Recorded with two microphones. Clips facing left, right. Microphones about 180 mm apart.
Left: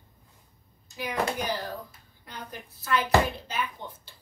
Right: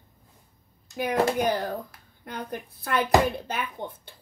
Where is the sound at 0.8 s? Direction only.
55° right (ahead or behind).